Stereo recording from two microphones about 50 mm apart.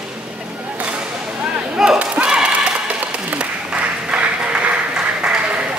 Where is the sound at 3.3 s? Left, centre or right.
Right.